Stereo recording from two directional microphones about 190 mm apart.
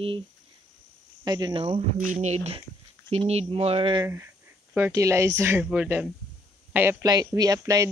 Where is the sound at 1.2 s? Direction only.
20° right (ahead or behind).